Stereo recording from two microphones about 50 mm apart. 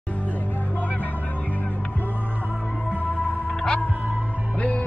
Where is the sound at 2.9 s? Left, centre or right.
Left.